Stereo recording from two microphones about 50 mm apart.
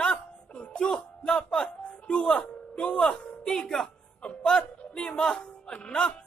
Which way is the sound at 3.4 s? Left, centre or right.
Centre.